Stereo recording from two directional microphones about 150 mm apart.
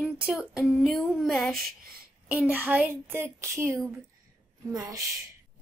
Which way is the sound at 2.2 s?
10° right (ahead or behind).